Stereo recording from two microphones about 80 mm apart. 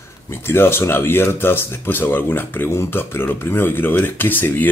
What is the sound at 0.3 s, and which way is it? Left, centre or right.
Speech, left.